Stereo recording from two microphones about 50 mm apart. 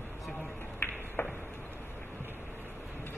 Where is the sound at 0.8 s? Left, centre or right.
Left.